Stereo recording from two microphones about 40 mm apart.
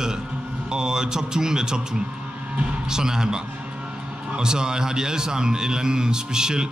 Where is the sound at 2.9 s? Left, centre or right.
Centre.